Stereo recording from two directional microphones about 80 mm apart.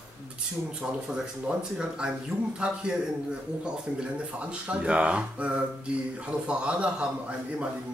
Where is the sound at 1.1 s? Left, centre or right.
Centre.